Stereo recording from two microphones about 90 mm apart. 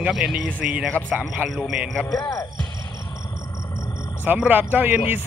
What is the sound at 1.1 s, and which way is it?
Speech, 20° right (ahead or behind).